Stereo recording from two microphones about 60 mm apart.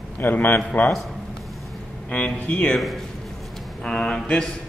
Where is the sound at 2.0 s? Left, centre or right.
Left.